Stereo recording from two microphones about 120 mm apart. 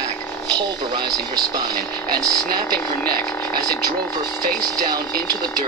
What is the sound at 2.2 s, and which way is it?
Speech, 35° right (ahead or behind).